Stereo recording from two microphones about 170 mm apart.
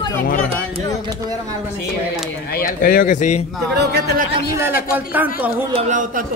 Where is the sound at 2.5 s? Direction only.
60° left (ahead or behind).